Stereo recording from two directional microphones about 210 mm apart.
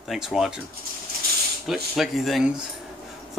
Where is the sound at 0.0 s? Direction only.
Centre (ahead or behind).